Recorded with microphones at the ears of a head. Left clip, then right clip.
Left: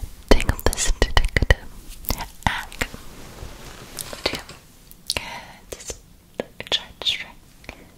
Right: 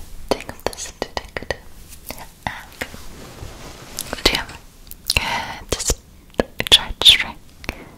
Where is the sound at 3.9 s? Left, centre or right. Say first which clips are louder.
Right 8 dB; right.